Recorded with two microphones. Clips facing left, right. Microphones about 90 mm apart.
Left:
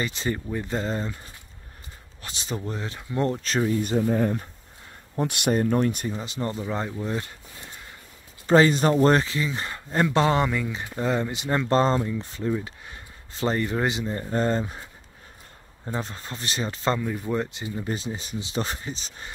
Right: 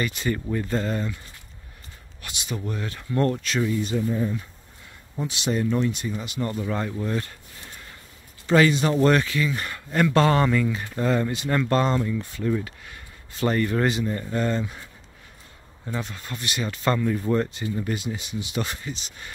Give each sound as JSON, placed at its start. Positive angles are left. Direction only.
{"t": 0.0, "sound": "speech", "side_deg": 25}
{"t": 2.2, "sound": "speech", "side_deg": 30}
{"t": 3.4, "sound": "speech", "side_deg": 40}
{"t": 4.0, "sound": "speech", "side_deg": 55}
{"t": 6.1, "sound": "speech", "side_deg": 25}
{"t": 8.5, "sound": "speech", "side_deg": 35}
{"t": 17.0, "sound": "speech", "side_deg": 15}
{"t": 17.9, "sound": "speech", "side_deg": 35}